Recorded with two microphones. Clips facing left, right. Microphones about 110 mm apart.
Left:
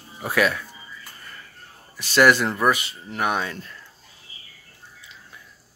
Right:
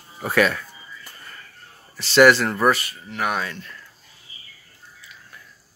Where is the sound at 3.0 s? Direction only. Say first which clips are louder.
Left 1 dB; 25° left (ahead or behind).